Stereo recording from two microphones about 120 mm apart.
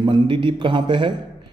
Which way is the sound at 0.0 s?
40° right (ahead or behind).